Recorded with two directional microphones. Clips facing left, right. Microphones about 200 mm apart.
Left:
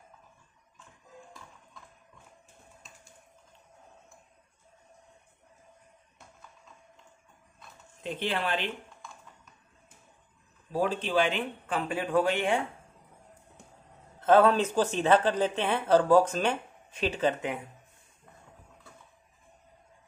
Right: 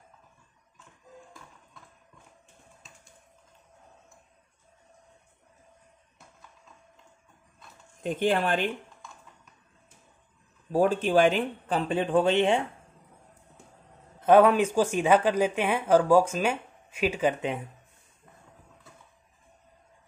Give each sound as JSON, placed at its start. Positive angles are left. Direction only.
{"t": 8.0, "sound": "speech", "side_deg": -45}
{"t": 10.7, "sound": "speech", "side_deg": -45}
{"t": 14.2, "sound": "speech", "side_deg": -15}